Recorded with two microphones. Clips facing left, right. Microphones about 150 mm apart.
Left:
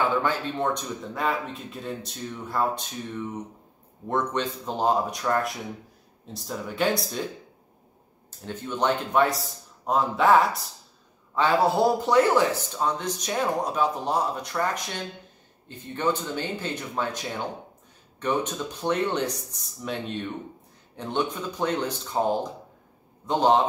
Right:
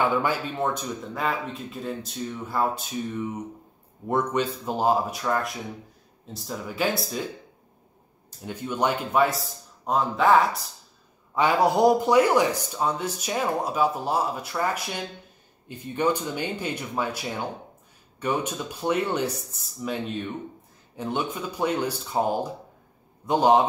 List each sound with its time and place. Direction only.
0.2 s a man's voice: 10° right (ahead or behind)
8.5 s speech: 10° right (ahead or behind)
11.3 s a man's voice: 15° right (ahead or behind)